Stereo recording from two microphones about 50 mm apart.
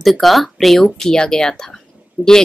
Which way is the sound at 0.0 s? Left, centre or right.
Centre.